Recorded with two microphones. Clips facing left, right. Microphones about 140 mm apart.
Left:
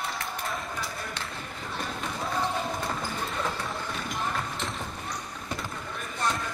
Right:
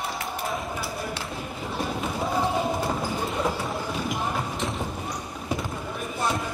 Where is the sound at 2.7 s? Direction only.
25° right (ahead or behind).